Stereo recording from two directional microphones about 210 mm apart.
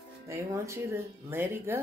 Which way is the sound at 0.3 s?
15° right (ahead or behind).